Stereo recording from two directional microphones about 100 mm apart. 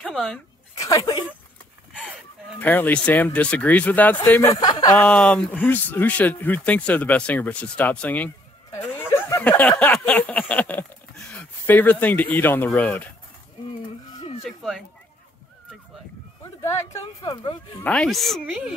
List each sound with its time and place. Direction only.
0.1 s speech: 5° left (ahead or behind)
0.7 s speech: 35° left (ahead or behind)
2.6 s speech: 15° left (ahead or behind)
4.4 s speech: 40° left (ahead or behind)
4.9 s speech: 10° left (ahead or behind)
9.4 s speech: 15° left (ahead or behind)
14.4 s speech: centre (ahead or behind)
17.2 s speech: 50° left (ahead or behind)
17.8 s speech: 5° left (ahead or behind)
18.4 s speech: 15° right (ahead or behind)